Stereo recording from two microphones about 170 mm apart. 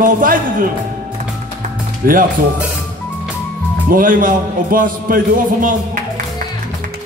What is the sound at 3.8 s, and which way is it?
Speech, 55° right (ahead or behind).